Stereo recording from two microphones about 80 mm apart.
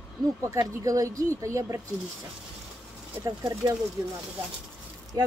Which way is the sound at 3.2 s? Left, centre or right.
Right.